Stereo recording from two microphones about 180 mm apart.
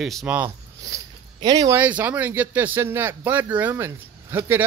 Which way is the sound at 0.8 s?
20° right (ahead or behind).